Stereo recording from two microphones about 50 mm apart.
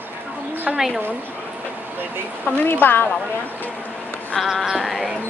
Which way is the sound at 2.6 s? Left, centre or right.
Left.